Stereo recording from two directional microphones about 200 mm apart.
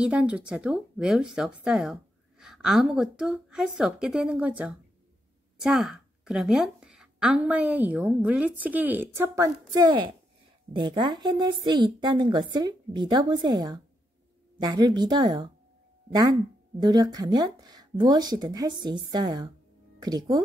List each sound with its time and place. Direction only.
0.0 s a woman's voice: 5° right (ahead or behind)